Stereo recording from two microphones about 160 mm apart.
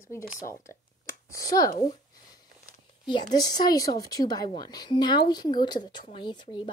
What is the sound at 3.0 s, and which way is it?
A woman's voice, 30° left (ahead or behind).